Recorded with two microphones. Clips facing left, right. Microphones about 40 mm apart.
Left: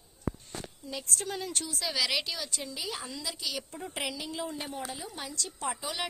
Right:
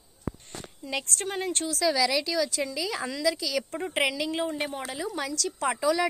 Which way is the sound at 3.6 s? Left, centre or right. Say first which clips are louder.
Right 9 dB; right.